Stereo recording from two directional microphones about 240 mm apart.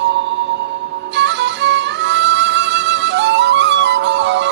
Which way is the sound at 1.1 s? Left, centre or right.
Right.